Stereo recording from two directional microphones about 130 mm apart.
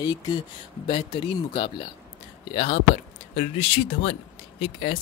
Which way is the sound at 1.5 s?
40° left (ahead or behind).